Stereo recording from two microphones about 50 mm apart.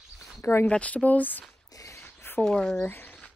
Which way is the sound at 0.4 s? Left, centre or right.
Left.